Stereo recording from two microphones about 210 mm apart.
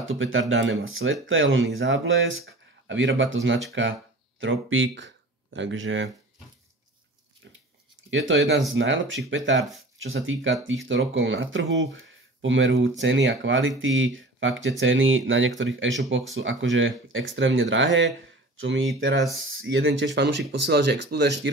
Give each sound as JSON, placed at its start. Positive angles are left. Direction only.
{"t": 0.1, "sound": "speech", "side_deg": -70}
{"t": 7.4, "sound": "pig", "side_deg": -55}
{"t": 8.3, "sound": "speech", "side_deg": -60}